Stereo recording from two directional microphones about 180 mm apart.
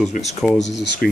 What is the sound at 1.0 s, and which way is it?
Speech, 60° left (ahead or behind).